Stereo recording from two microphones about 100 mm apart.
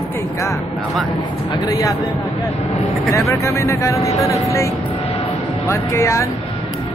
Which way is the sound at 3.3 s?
25° left (ahead or behind).